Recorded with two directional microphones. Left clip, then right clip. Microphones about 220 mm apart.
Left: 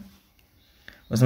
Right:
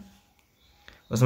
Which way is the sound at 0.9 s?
Centre (ahead or behind).